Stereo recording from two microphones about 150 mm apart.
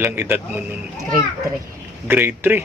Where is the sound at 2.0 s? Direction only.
15° right (ahead or behind).